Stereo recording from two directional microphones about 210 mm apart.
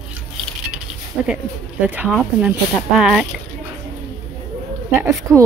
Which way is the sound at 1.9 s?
5° right (ahead or behind).